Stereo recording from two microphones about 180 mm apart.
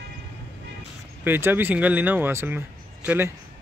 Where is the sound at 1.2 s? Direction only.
10° right (ahead or behind).